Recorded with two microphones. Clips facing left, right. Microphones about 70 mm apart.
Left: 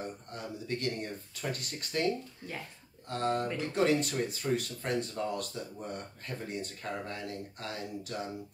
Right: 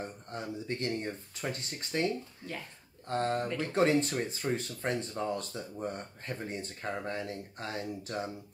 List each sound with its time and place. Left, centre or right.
0.3 s speech: right
3.1 s speech: right